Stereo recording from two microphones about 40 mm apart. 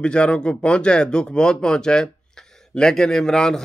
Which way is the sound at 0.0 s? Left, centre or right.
Left.